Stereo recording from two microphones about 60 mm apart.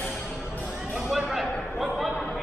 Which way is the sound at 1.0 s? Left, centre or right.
Centre.